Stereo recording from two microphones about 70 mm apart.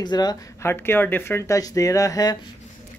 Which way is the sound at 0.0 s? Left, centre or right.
Left.